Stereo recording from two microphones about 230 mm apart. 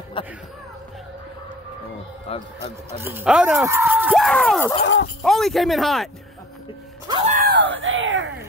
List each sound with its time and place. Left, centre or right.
0.2 s a sound: left
2.2 s speech: left
3.0 s speech: centre
4.8 s speech: left
5.2 s speech: centre
7.3 s a sound: right